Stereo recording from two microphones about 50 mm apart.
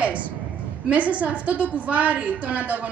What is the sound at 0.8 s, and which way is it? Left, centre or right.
A woman's voice, right.